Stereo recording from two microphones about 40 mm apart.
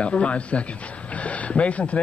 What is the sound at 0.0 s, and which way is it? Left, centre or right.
Speech, left.